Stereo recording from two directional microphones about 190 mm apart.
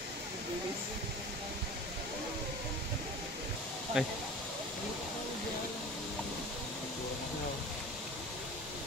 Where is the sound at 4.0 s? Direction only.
5° right (ahead or behind).